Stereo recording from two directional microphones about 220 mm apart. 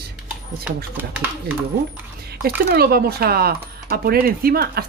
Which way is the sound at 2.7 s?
45° right (ahead or behind).